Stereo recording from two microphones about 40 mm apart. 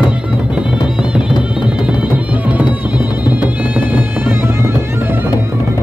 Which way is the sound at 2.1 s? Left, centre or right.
Right.